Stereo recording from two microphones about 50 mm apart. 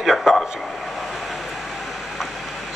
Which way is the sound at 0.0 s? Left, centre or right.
Centre.